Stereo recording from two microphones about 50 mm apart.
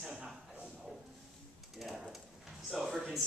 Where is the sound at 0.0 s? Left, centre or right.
Right.